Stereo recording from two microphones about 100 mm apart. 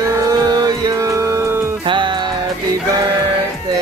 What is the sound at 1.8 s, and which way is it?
Music, 55° right (ahead or behind).